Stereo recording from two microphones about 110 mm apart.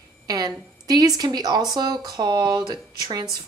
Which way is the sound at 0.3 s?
35° right (ahead or behind).